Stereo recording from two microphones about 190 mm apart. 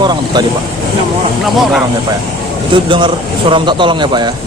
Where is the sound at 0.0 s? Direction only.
25° right (ahead or behind).